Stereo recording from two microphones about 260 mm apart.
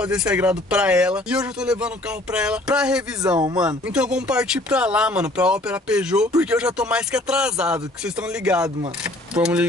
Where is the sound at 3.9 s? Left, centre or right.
Centre.